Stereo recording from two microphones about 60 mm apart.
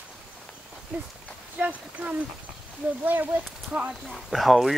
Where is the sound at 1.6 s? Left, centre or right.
Right.